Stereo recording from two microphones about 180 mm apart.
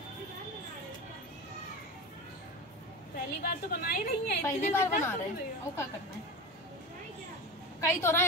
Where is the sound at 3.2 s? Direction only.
55° left (ahead or behind).